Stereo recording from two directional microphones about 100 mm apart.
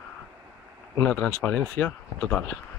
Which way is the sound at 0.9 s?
20° left (ahead or behind).